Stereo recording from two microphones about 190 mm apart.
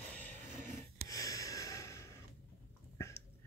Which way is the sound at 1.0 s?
20° left (ahead or behind).